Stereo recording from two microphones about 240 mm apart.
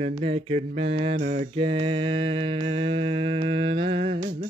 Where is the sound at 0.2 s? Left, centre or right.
Right.